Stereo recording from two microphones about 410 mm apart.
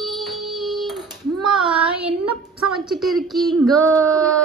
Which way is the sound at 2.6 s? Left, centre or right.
Centre.